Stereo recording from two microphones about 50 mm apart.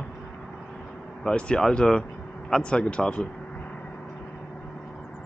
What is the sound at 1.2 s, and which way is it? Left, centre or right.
Speech, centre.